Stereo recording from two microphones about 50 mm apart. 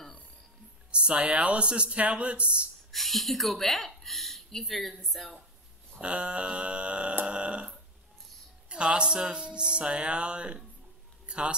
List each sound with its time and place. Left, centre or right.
0.9 s music: right
2.9 s speech: centre
5.9 s music: right
11.2 s a sound: right